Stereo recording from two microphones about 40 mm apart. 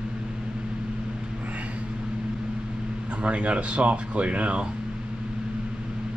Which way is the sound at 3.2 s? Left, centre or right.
Right.